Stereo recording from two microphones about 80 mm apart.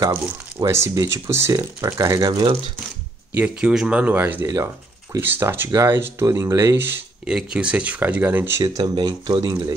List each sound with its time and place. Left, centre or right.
0.0 s speech: right
0.7 s speech: right
3.3 s speech: centre
4.0 s speech: right
7.2 s speech: centre; by 8.6 s right
8.7 s speech: right